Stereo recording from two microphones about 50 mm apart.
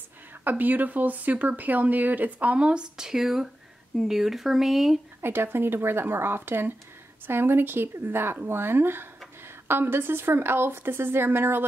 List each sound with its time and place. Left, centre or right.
0.4 s speech: right
2.6 s speech: centre
5.2 s speech: right